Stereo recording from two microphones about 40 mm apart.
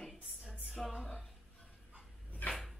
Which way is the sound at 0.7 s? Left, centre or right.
Centre.